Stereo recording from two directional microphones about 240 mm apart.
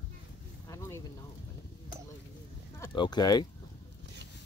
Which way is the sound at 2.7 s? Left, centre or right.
Centre.